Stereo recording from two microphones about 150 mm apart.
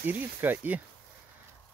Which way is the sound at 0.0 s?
10° right (ahead or behind).